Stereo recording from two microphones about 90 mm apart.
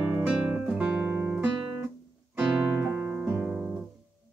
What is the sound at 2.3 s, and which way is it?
Music, 20° right (ahead or behind).